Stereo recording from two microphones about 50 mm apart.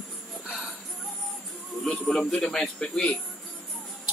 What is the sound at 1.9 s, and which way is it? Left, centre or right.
Speech, centre.